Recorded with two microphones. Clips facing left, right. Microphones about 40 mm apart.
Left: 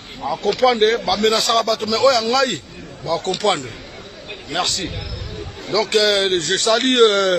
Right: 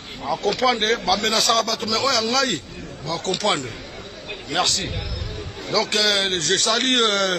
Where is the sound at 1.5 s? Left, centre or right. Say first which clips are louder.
Left 3 dB; left.